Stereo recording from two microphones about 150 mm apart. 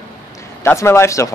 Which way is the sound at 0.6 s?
20° left (ahead or behind).